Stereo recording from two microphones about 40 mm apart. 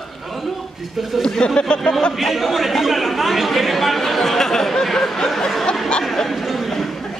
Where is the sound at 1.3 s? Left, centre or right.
Centre.